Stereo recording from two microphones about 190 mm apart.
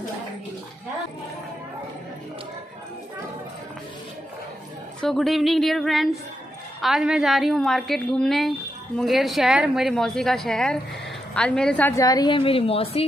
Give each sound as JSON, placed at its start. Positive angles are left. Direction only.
{"t": 5.0, "sound": "a woman's voice", "side_deg": 0}